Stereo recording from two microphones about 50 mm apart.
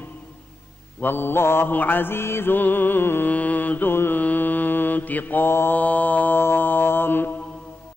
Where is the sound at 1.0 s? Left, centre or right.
Left.